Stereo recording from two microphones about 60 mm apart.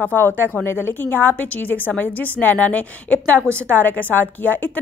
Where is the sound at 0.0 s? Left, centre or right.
Left.